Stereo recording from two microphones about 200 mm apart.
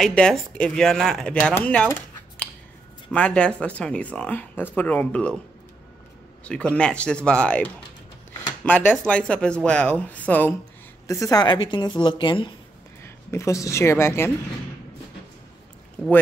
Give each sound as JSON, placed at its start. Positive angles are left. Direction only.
{"t": 0.0, "sound": "speech", "side_deg": 5}
{"t": 6.4, "sound": "a woman's voice", "side_deg": 5}
{"t": 13.0, "sound": "speech", "side_deg": 15}